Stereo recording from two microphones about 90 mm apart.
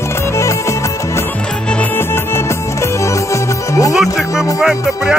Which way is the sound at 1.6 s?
10° left (ahead or behind).